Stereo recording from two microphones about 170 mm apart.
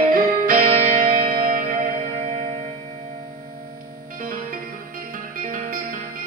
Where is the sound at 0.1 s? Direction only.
55° right (ahead or behind).